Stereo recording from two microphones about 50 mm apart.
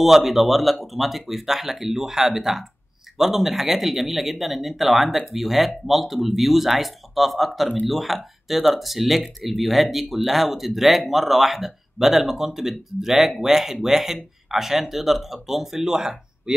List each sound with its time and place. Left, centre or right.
0.0 s speech: centre